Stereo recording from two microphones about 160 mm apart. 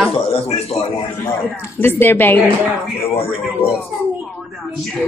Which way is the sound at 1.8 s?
15° left (ahead or behind).